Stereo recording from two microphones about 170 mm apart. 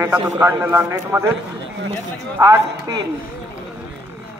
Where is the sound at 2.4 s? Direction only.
25° right (ahead or behind).